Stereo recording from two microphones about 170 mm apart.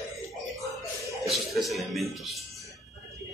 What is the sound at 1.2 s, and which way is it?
A man's voice, centre (ahead or behind).